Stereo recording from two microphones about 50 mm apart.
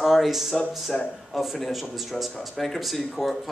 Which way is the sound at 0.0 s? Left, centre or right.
Centre.